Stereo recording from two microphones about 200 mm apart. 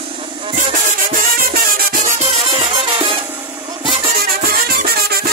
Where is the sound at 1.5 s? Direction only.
45° right (ahead or behind); by 3.1 s 25° right (ahead or behind).